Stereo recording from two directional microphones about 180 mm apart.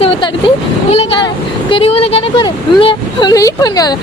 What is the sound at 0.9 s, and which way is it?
Speech, 30° left (ahead or behind).